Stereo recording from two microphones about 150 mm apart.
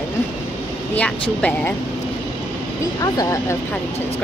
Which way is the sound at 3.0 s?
20° left (ahead or behind).